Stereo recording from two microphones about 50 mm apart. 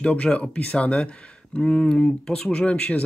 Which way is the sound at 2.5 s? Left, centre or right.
Left.